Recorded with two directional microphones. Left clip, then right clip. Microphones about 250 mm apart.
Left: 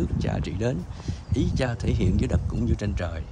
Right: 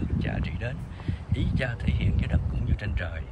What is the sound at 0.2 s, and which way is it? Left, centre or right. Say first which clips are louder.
Speech: left 4 dB; centre.